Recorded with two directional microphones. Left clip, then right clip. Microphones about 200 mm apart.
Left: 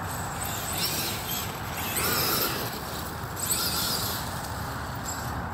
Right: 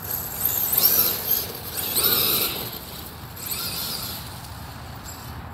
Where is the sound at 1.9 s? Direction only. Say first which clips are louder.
Right 4 dB; 35° right (ahead or behind).